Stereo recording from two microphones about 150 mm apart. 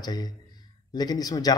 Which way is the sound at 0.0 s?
25° left (ahead or behind).